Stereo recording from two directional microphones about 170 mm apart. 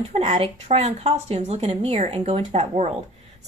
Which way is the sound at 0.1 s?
40° right (ahead or behind).